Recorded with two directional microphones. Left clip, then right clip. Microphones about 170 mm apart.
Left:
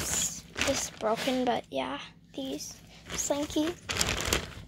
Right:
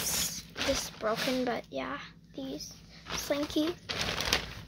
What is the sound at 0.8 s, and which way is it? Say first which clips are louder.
Speech: left 2 dB; 20° left (ahead or behind).